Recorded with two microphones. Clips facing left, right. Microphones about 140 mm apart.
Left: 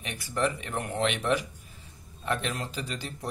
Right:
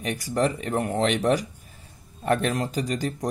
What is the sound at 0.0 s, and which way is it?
A man's voice, 40° right (ahead or behind).